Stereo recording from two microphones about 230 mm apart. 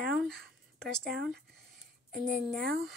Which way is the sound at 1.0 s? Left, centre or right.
Right.